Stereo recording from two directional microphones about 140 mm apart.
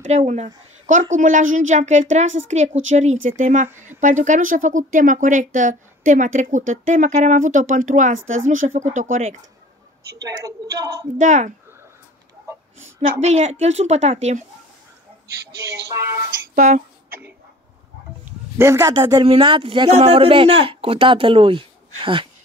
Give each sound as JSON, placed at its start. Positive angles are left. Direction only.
{"t": 0.0, "sound": "a woman's voice", "side_deg": -55}
{"t": 0.8, "sound": "speech", "side_deg": -65}
{"t": 10.2, "sound": "a woman's voice", "side_deg": -25}
{"t": 11.1, "sound": "speech", "side_deg": -60}
{"t": 13.2, "sound": "a woman's voice", "side_deg": -50}
{"t": 15.2, "sound": "speech", "side_deg": -25}
{"t": 16.5, "sound": "speech", "side_deg": -60}
{"t": 18.2, "sound": "a sound", "side_deg": -20}
{"t": 18.9, "sound": "a woman's voice", "side_deg": -25}
{"t": 19.2, "sound": "speech", "side_deg": -40}